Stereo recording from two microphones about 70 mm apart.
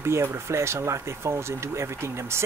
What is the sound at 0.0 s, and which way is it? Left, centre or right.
Speech, right.